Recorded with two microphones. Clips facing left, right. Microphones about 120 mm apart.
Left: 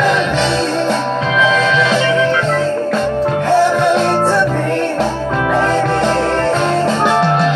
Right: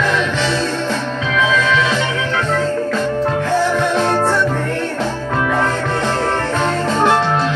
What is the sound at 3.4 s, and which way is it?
Music, 15° left (ahead or behind).